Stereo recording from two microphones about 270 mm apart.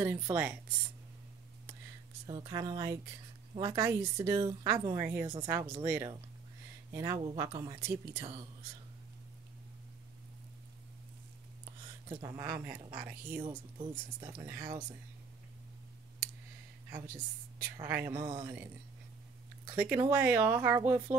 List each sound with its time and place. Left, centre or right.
0.0 s speech: centre
2.2 s speech: centre
12.1 s speech: centre
13.4 s speech: centre
17.8 s speech: centre